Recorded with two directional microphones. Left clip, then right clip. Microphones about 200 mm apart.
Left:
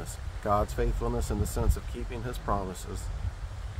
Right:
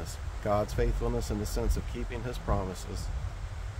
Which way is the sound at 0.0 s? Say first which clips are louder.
Left 1 dB; 20° left (ahead or behind).